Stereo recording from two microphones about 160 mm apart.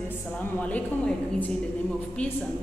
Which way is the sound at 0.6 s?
10° left (ahead or behind).